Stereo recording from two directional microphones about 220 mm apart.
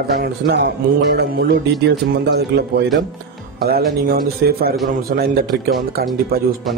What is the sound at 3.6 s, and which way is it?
A man's voice, 45° right (ahead or behind).